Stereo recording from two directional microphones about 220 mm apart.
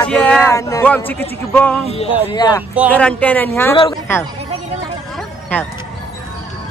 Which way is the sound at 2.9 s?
5° left (ahead or behind).